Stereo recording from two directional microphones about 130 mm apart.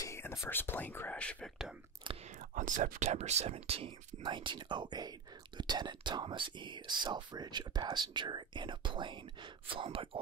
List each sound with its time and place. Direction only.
0.0 s speech: 20° left (ahead or behind)
2.1 s speech: 65° right (ahead or behind)
4.2 s speech: 40° right (ahead or behind)